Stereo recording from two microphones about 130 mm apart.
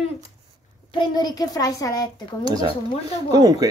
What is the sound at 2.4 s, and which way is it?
Speech, 30° right (ahead or behind).